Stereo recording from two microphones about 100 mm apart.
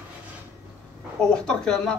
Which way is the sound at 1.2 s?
5° left (ahead or behind).